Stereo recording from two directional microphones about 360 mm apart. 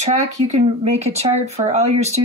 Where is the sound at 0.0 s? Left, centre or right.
Centre.